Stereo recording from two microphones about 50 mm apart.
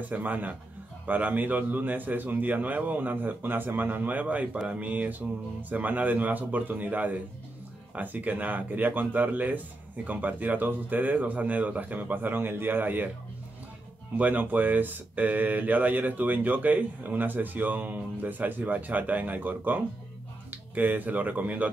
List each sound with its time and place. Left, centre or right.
0.0 s speech: right
14.1 s speech: right